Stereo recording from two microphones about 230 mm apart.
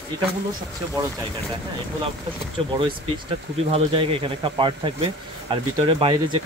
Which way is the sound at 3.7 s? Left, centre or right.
Right.